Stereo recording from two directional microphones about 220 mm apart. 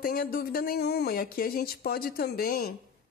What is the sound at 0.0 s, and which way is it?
A woman's voice, 40° left (ahead or behind).